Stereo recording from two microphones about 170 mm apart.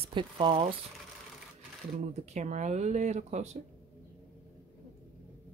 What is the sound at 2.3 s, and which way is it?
Speech, 45° right (ahead or behind).